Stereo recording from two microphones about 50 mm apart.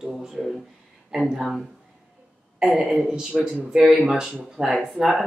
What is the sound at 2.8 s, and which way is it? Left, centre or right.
Speech, centre.